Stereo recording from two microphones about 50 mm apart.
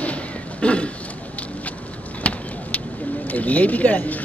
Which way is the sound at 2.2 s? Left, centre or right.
Left.